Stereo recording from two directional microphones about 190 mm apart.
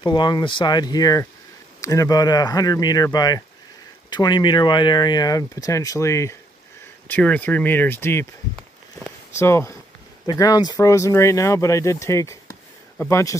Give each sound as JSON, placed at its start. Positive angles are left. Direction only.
{"t": 0.0, "sound": "speech", "side_deg": 25}
{"t": 9.4, "sound": "speech", "side_deg": 15}